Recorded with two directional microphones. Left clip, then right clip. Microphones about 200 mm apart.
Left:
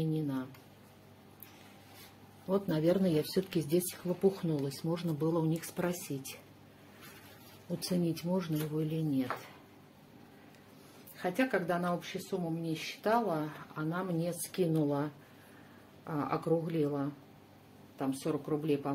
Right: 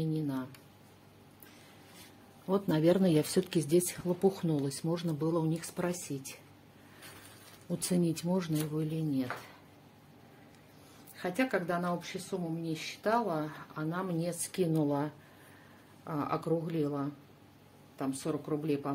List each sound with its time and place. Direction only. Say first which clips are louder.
0.0 s a sound: even; 10° right (ahead or behind)
2.4 s speech: right 2 dB; 25° right (ahead or behind); by 5.9 s 5° right (ahead or behind)
7.6 s speech: right 2 dB; 20° right (ahead or behind)
11.1 s speech: even; 10° right (ahead or behind)